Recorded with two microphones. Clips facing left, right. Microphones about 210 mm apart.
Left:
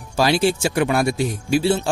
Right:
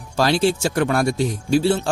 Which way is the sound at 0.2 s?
10° left (ahead or behind).